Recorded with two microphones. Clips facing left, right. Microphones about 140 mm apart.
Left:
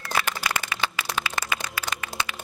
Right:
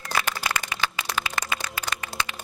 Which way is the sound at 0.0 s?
15° right (ahead or behind).